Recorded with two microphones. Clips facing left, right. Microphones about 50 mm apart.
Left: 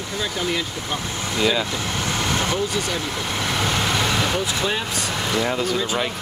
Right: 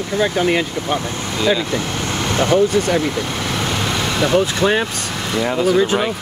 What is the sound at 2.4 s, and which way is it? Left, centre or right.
Speech, right.